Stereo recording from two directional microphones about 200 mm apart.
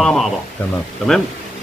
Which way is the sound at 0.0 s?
Centre (ahead or behind).